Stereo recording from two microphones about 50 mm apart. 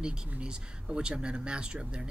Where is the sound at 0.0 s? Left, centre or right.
Centre.